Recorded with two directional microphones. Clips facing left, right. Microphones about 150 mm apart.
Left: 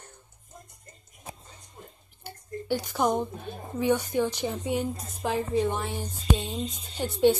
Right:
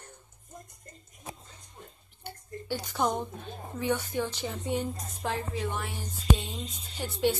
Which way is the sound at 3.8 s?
15° left (ahead or behind).